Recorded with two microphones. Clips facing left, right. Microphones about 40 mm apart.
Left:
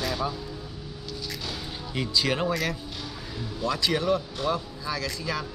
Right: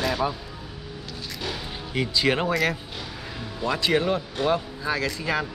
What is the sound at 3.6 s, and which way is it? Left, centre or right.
Speech, right.